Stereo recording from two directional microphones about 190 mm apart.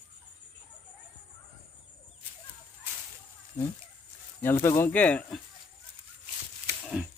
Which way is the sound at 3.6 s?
40° left (ahead or behind).